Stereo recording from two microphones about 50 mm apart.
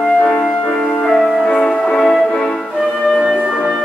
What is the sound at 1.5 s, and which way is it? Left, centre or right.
Music, centre.